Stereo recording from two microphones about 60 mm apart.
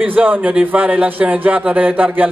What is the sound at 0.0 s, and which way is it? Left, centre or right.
A man's voice, right.